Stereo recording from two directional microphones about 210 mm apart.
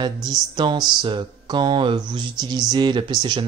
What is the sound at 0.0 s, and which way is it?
Speech, 20° right (ahead or behind).